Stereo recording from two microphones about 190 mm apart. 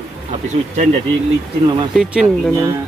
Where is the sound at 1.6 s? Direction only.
25° right (ahead or behind).